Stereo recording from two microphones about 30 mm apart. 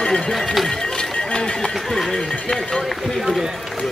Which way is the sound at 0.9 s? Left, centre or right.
Left.